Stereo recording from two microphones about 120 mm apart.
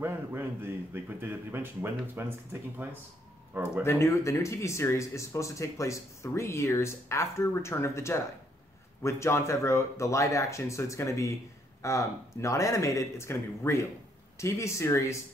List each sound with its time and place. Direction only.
0.0 s a man's voice: 20° right (ahead or behind)
3.8 s speech: 25° left (ahead or behind)